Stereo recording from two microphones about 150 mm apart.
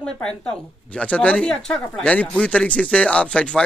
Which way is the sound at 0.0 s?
5° left (ahead or behind).